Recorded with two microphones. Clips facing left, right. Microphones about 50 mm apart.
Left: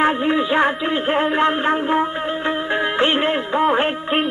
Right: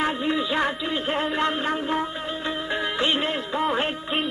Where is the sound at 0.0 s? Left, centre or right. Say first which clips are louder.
Left 7 dB; left.